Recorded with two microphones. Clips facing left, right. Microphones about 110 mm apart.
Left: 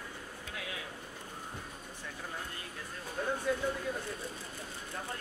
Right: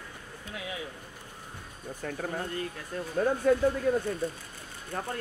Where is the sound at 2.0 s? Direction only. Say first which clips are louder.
Right 10 dB; 55° right (ahead or behind).